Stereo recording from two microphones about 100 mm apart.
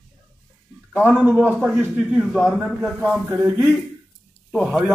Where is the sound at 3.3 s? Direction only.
25° right (ahead or behind).